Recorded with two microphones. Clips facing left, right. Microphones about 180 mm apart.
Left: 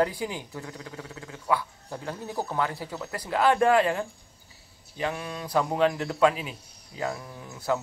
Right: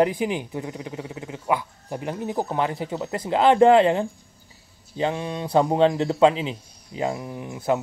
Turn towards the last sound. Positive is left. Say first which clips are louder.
# right 5 dB
turn(degrees=-20)  # may be behind; listen again after turning